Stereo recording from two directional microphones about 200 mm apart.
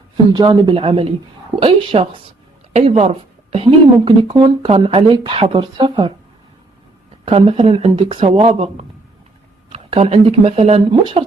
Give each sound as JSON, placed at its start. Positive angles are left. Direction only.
{"t": 0.3, "sound": "speech", "side_deg": -25}
{"t": 7.2, "sound": "speech", "side_deg": -30}
{"t": 9.7, "sound": "speech", "side_deg": -30}